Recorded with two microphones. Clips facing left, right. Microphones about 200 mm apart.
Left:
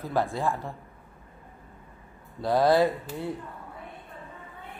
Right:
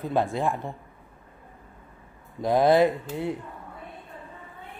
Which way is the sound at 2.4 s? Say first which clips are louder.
Right 2 dB; 20° right (ahead or behind).